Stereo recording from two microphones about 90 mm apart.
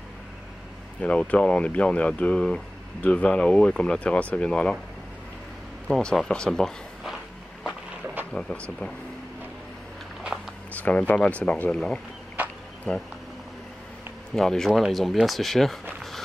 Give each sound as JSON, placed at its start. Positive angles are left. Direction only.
{"t": 1.0, "sound": "speech", "side_deg": 15}
{"t": 5.9, "sound": "speech", "side_deg": 5}
{"t": 8.3, "sound": "speech", "side_deg": 10}
{"t": 10.7, "sound": "speech", "side_deg": 15}
{"t": 12.4, "sound": "a sound", "side_deg": -20}
{"t": 12.9, "sound": "speech", "side_deg": 10}
{"t": 14.3, "sound": "speech", "side_deg": 5}